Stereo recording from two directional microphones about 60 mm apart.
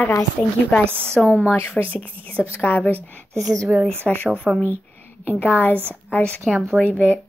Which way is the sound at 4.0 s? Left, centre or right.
Left.